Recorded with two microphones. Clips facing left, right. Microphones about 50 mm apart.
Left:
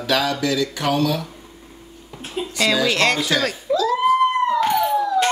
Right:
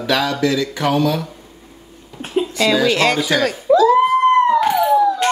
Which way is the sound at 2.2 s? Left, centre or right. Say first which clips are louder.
Right 8 dB; right.